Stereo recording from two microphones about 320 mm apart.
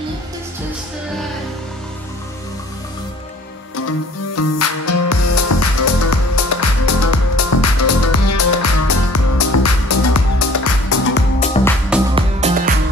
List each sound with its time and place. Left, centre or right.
4.4 s music: left
11.3 s music: left
12.2 s music: centre